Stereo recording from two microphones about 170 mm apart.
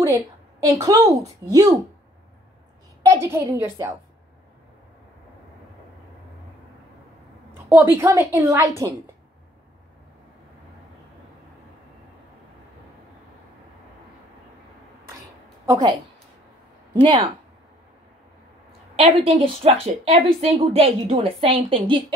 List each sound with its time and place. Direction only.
0.7 s a woman's voice: 20° right (ahead or behind)
3.0 s a woman's voice: 15° right (ahead or behind)
7.7 s a woman's voice: 10° right (ahead or behind)
15.6 s a woman's voice: 20° right (ahead or behind)
16.9 s speech: 25° right (ahead or behind)
18.9 s a woman's voice: 35° right (ahead or behind)